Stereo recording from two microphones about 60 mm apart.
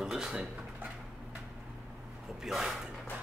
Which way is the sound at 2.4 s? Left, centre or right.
Centre.